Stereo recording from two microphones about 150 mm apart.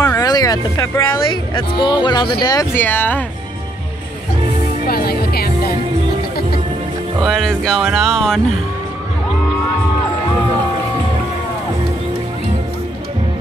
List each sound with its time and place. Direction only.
0.0 s speech: 25° left (ahead or behind)
4.8 s music: 90° left
7.2 s speech: 5° left (ahead or behind)